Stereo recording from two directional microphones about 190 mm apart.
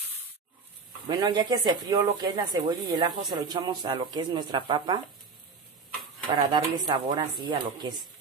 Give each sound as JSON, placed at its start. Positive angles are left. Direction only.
{"t": 1.0, "sound": "speech", "side_deg": -25}
{"t": 6.2, "sound": "speech", "side_deg": -25}